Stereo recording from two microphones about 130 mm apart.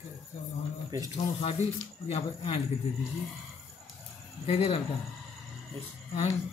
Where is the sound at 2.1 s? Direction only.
45° left (ahead or behind).